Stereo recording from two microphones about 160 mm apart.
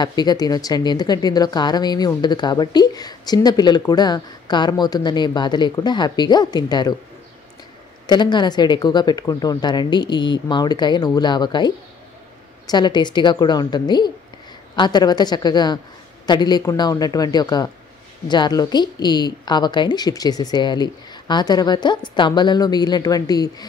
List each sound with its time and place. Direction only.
0.0 s speech: 25° left (ahead or behind)
8.1 s speech: 30° left (ahead or behind)